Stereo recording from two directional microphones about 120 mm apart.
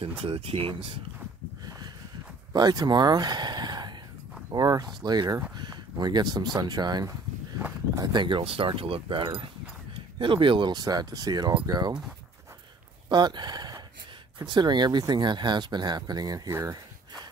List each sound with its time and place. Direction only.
0.2 s speech: 50° right (ahead or behind)
2.5 s speech: 35° right (ahead or behind)
13.1 s speech: 40° right (ahead or behind)